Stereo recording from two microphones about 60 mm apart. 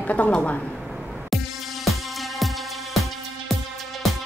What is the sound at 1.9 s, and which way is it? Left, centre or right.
Music, centre.